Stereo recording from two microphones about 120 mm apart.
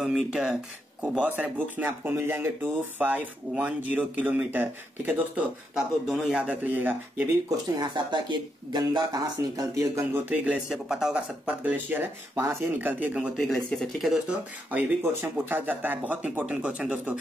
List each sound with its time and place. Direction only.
0.0 s speech: 5° right (ahead or behind)
7.4 s speech: 30° right (ahead or behind)
10.3 s speech: 10° right (ahead or behind)
13.4 s speech: 5° left (ahead or behind)
15.1 s speech: 20° right (ahead or behind)